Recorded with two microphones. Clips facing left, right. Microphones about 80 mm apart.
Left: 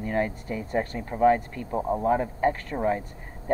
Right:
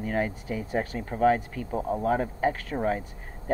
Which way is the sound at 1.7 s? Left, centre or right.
Centre.